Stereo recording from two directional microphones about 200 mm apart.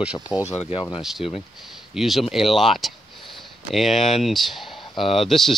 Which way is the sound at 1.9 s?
Centre (ahead or behind).